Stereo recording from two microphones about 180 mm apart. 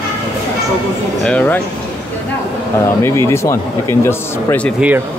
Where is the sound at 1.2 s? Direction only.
10° left (ahead or behind).